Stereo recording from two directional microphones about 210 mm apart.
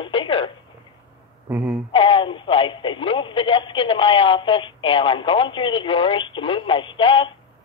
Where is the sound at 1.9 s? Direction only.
25° left (ahead or behind).